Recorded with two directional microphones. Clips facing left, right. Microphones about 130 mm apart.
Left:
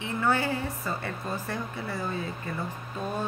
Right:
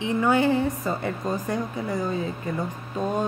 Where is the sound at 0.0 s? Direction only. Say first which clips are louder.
Right 6 dB; 15° right (ahead or behind).